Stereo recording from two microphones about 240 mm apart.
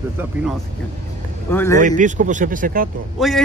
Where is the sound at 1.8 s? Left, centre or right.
Right.